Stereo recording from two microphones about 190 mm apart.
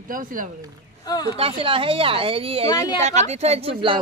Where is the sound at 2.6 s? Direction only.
20° left (ahead or behind).